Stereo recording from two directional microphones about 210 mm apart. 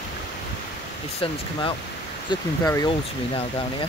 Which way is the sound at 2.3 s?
20° left (ahead or behind).